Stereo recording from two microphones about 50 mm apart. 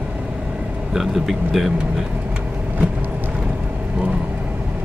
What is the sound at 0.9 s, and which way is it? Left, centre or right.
Speech, centre.